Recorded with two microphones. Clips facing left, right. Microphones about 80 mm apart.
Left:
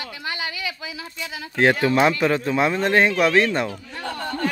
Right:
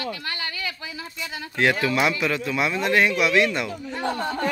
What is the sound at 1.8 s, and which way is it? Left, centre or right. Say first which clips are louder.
Speech: left 4 dB; left.